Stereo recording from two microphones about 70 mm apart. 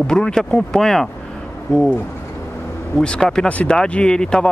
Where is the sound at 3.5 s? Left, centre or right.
Left.